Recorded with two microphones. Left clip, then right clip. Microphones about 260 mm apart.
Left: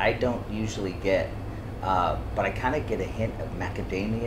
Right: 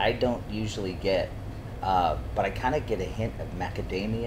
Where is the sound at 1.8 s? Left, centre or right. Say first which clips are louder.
Even; right.